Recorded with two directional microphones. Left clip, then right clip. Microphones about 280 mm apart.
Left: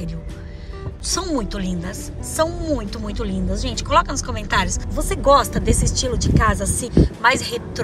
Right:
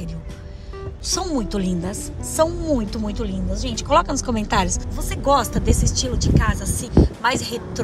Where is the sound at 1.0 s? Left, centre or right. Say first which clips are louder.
Left 1 dB; centre.